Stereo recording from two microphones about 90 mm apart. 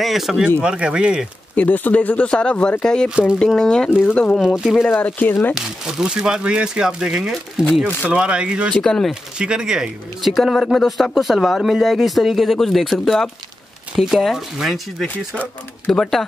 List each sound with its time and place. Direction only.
0.0 s speech: centre (ahead or behind)
1.5 s speech: 20° left (ahead or behind)
4.4 s speech: 5° right (ahead or behind)
4.8 s speech: 20° left (ahead or behind)
5.9 s speech: 5° right (ahead or behind)
8.7 s speech: 5° left (ahead or behind)
9.4 s speech: 10° right (ahead or behind)